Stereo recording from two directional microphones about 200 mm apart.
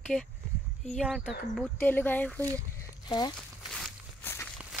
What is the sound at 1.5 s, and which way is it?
Speech, 10° left (ahead or behind).